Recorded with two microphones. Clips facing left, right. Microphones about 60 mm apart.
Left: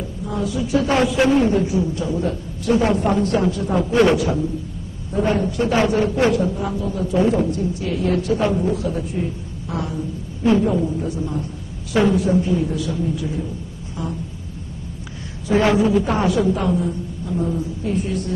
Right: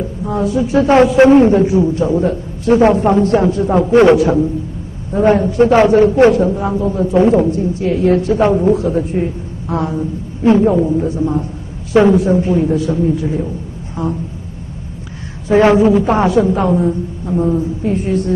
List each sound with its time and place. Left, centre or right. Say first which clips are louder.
0.2 s a man's voice: right 7 dB; right
15.4 s a man's voice: right 7 dB; right